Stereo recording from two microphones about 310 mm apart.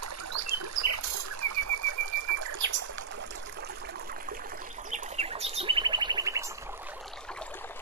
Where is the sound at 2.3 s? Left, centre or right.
Right.